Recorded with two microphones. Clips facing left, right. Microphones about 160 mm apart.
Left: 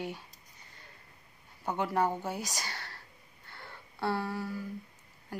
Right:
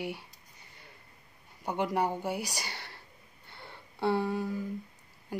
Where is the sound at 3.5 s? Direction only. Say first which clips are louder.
Even; 20° right (ahead or behind).